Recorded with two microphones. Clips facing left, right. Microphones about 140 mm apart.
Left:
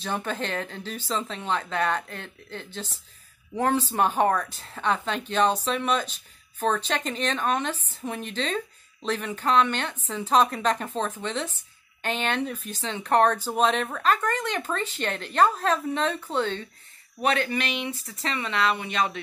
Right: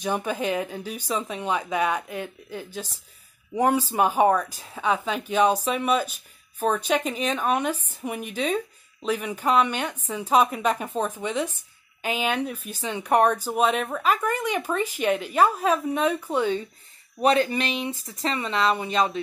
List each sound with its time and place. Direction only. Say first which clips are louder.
0.0 s speech: right 4 dB; 10° right (ahead or behind)
17.2 s speech: right 4 dB; 30° right (ahead or behind)